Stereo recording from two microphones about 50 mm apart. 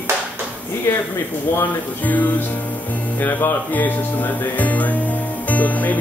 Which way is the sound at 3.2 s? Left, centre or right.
Left.